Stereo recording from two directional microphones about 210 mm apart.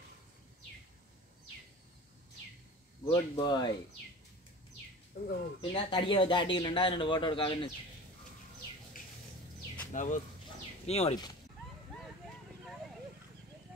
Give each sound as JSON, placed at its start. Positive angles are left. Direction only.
{"t": 3.1, "sound": "speech", "side_deg": 20}
{"t": 5.2, "sound": "speech", "side_deg": 45}
{"t": 5.6, "sound": "speech", "side_deg": 20}
{"t": 9.0, "sound": "bird", "side_deg": 40}
{"t": 9.9, "sound": "speech", "side_deg": 35}